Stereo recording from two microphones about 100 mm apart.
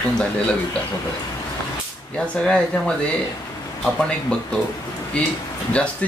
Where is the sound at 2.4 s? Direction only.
5° left (ahead or behind).